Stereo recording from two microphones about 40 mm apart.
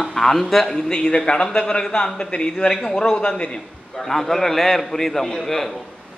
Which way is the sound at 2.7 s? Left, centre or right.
Centre.